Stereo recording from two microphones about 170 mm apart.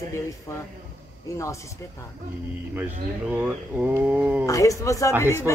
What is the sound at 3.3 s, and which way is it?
Speech, 10° right (ahead or behind).